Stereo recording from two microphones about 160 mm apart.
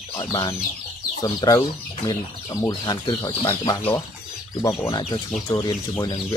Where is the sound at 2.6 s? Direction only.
25° left (ahead or behind).